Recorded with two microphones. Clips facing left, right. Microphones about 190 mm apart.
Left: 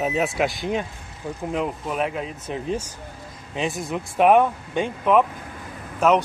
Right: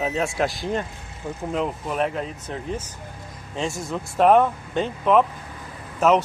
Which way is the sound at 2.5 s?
15° left (ahead or behind).